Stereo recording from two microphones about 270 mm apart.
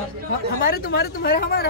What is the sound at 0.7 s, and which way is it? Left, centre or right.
Speech, left.